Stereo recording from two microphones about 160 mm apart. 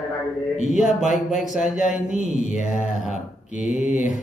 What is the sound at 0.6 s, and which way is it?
Speech, 50° left (ahead or behind).